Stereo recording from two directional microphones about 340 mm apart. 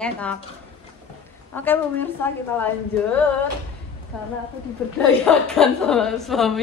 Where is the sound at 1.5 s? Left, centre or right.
Centre.